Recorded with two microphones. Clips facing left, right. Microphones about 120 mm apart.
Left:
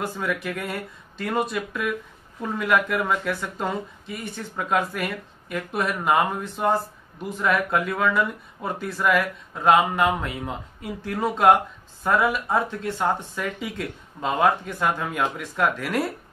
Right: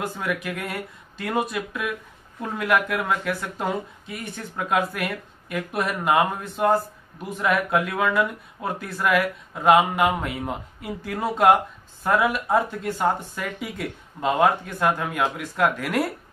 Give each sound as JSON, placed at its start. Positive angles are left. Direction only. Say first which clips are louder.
{"t": 0.2, "sound": "speech", "louder": "even", "side_deg": 0}